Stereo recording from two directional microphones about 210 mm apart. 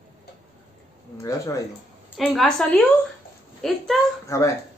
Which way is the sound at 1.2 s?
15° left (ahead or behind).